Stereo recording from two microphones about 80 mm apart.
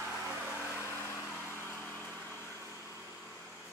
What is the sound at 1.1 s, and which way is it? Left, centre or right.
Vehicle, left.